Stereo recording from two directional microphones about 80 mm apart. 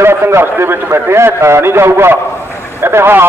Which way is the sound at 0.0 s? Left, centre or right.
Right.